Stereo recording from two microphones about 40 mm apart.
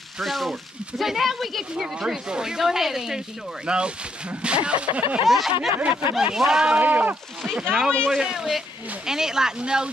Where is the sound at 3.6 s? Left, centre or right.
Right.